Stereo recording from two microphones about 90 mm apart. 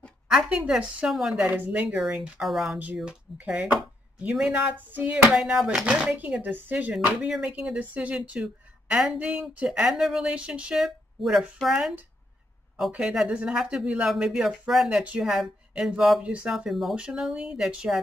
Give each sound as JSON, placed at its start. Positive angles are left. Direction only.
{"t": 0.3, "sound": "speech", "side_deg": -5}
{"t": 7.1, "sound": "speech", "side_deg": -10}
{"t": 12.9, "sound": "speech", "side_deg": -5}